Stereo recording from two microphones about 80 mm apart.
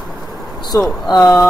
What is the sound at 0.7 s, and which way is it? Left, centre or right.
Speech, left.